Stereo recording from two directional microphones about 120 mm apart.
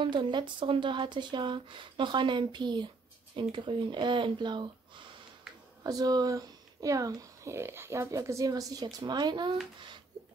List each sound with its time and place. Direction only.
0.0 s speech: 40° right (ahead or behind)